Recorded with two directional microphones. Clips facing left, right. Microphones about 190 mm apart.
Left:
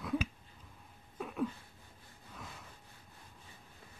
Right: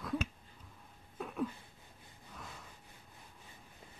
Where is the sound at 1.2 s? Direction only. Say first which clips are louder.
Left 1 dB; centre (ahead or behind).